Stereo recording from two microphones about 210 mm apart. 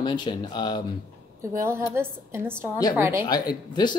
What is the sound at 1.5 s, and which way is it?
A woman's voice, 10° right (ahead or behind).